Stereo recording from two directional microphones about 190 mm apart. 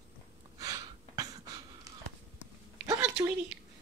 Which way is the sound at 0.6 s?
20° right (ahead or behind).